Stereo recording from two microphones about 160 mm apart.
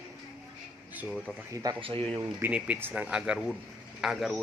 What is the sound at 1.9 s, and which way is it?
Speech, 35° right (ahead or behind).